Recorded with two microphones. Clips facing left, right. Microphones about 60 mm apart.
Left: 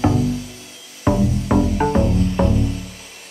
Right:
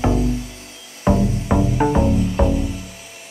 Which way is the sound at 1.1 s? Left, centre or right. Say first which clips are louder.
Right 1 dB; centre.